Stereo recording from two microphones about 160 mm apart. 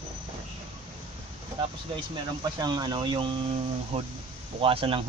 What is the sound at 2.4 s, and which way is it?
Speech, 25° right (ahead or behind).